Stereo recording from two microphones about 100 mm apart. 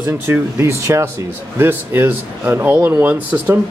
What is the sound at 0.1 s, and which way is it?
Speech, 25° right (ahead or behind).